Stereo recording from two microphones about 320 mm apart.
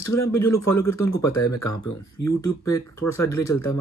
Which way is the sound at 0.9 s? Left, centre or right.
Left.